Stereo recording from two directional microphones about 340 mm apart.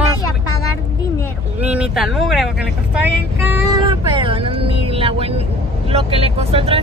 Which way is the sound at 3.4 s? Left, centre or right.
Centre.